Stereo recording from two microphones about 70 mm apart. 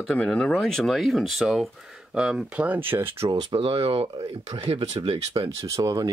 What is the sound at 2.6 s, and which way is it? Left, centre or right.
Speech, right.